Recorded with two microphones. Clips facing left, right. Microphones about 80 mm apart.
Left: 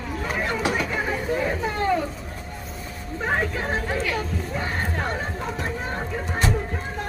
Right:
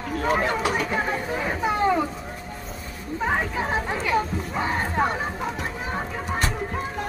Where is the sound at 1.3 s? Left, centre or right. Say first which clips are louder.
Left 1 dB; centre.